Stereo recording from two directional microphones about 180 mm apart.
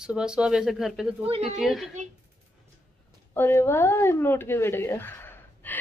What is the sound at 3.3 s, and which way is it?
Speech, 15° left (ahead or behind).